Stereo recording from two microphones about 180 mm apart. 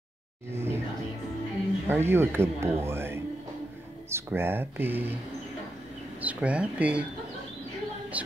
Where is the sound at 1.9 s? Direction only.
15° right (ahead or behind).